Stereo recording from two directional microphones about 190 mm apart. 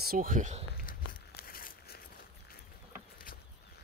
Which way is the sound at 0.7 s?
50° left (ahead or behind).